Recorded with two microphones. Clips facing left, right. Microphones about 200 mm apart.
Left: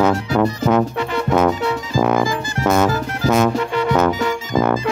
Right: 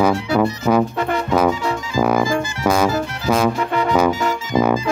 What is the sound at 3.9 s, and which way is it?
Music, 10° right (ahead or behind).